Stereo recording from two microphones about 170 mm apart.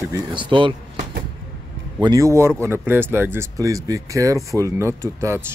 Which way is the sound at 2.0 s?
20° right (ahead or behind).